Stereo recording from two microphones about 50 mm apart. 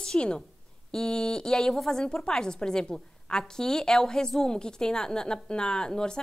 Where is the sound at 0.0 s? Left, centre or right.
Centre.